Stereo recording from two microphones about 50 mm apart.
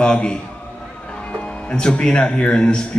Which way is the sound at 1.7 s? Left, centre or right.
Centre.